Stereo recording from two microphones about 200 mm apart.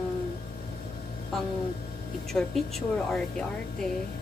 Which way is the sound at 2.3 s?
Centre (ahead or behind).